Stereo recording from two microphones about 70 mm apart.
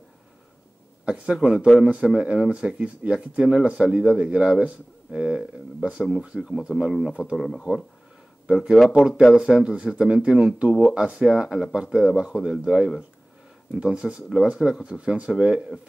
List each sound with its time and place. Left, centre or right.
1.0 s speech: centre
8.9 s speech: centre